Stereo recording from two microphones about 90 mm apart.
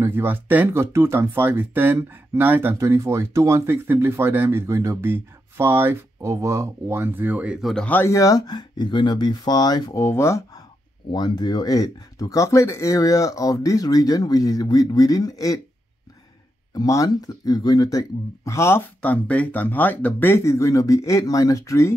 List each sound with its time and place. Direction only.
0.0 s speech: 25° right (ahead or behind)
2.7 s speech: 35° right (ahead or behind)
7.8 s speech: 20° left (ahead or behind)
8.1 s speech: 40° left (ahead or behind)
10.0 s speech: 30° left (ahead or behind)
11.1 s speech: 55° left (ahead or behind)
16.7 s speech: 40° left (ahead or behind)
18.9 s speech: 15° left (ahead or behind); by 21.9 s 35° left (ahead or behind)